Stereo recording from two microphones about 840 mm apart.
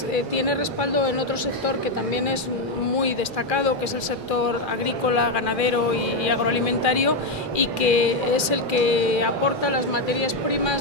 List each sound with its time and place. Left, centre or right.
0.1 s speech: left
5.0 s speech: left